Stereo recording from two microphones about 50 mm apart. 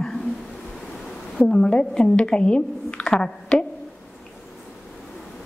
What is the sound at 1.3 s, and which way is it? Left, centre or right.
A woman's voice, centre.